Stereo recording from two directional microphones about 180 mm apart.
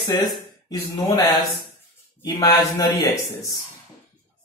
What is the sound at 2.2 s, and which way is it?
Speech, 20° left (ahead or behind).